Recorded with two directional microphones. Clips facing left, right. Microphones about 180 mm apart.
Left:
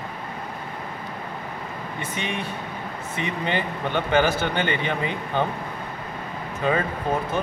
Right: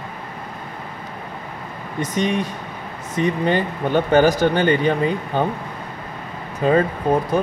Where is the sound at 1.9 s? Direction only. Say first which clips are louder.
Right 10 dB; 40° right (ahead or behind).